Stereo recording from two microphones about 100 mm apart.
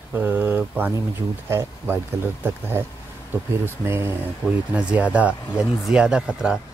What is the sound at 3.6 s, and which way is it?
Speech, 25° right (ahead or behind).